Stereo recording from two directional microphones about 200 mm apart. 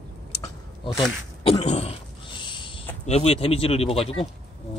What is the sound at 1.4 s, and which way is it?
Throat clearing, 30° left (ahead or behind).